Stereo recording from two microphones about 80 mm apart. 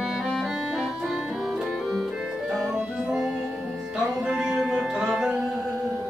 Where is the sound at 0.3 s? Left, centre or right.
Centre.